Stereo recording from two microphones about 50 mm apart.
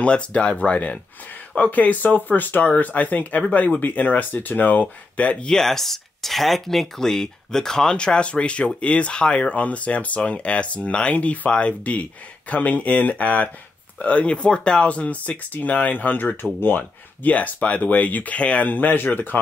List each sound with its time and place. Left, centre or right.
0.0 s speech: left
5.5 s speech: centre; by 16.8 s left
17.2 s speech: left
18.7 s speech: left